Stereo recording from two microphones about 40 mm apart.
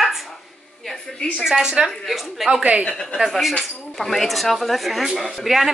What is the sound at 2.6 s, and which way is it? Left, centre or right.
Speech, right.